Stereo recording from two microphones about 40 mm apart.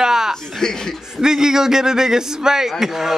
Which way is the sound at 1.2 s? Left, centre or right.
Centre.